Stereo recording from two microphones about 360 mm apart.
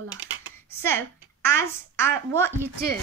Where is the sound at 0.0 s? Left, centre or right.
Right.